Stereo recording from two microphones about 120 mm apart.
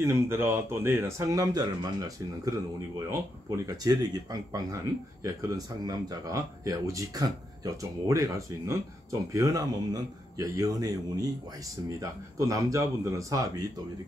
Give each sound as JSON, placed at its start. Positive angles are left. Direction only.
{"t": 0.0, "sound": "speech", "side_deg": -20}